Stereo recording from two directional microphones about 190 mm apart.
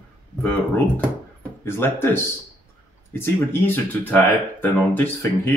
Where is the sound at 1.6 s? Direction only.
10° left (ahead or behind).